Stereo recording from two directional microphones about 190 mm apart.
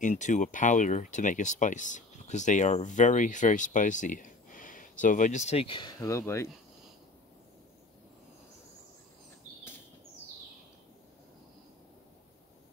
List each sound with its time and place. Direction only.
0.0 s speech: 40° left (ahead or behind); by 6.5 s 15° left (ahead or behind)